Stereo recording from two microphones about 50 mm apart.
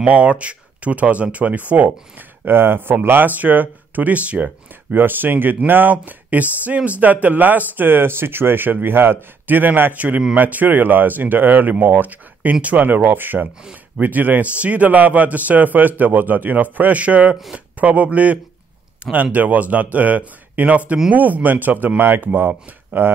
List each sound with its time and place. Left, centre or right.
0.0 s speech: right
2.5 s speech: right
4.9 s a man's voice: right